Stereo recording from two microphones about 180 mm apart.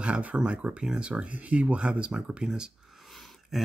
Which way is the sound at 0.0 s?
5° right (ahead or behind).